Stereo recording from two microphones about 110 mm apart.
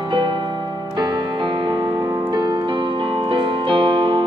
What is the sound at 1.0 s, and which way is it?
Music, 45° right (ahead or behind).